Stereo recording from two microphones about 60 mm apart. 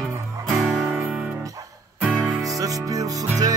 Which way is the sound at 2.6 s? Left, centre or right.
Right.